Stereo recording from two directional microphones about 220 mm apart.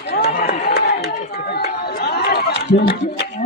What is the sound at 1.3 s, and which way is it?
Chatter, 45° left (ahead or behind).